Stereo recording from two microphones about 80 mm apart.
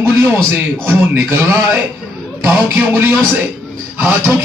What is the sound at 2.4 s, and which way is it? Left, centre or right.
Speech, centre.